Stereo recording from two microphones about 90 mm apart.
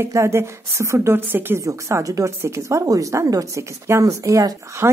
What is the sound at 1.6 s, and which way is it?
Speech, 35° right (ahead or behind).